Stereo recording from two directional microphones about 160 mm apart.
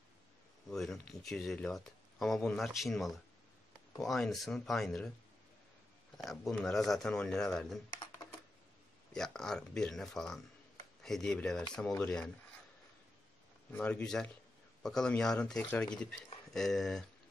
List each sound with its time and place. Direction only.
0.7 s speech: centre (ahead or behind)
6.1 s speech: centre (ahead or behind)
7.9 s computer keyboard: 25° left (ahead or behind)
9.1 s speech: 5° left (ahead or behind)
13.7 s speech: 10° left (ahead or behind)